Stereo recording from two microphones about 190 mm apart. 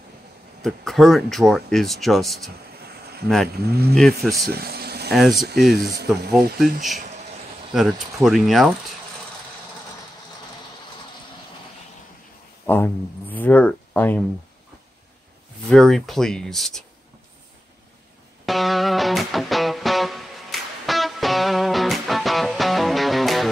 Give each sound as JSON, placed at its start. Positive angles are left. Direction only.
{"t": 0.6, "sound": "speech", "side_deg": 0}
{"t": 3.5, "sound": "speech", "side_deg": -55}
{"t": 3.9, "sound": "speech", "side_deg": 0}
{"t": 4.4, "sound": "a sound", "side_deg": -55}
{"t": 5.1, "sound": "speech", "side_deg": 0}
{"t": 12.6, "sound": "speech", "side_deg": 10}
{"t": 15.7, "sound": "speech", "side_deg": 0}
{"t": 18.4, "sound": "music", "side_deg": 0}